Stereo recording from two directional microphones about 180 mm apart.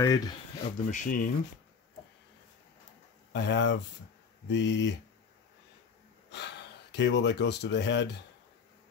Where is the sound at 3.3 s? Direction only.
80° left.